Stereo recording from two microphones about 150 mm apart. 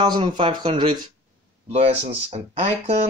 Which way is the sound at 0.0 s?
30° right (ahead or behind).